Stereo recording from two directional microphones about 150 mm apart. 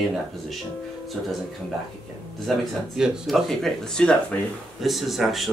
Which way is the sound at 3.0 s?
Centre (ahead or behind).